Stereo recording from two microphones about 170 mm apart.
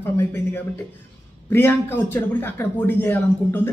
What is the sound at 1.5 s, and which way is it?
A man's voice, 15° left (ahead or behind).